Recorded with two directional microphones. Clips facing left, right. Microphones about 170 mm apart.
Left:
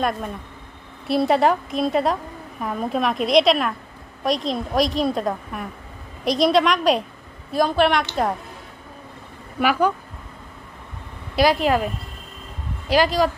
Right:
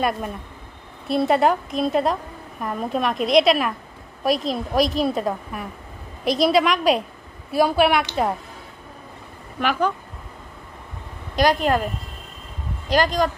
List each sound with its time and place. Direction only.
1.0 s a woman's voice: centre (ahead or behind)
9.6 s speech: 10° left (ahead or behind)
11.3 s a woman's voice: 5° left (ahead or behind)